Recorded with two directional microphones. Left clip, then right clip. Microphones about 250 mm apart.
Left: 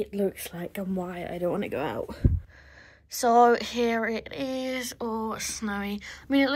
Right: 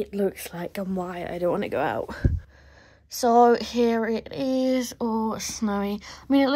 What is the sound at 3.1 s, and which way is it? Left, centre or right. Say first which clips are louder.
Speech: right 2 dB; centre.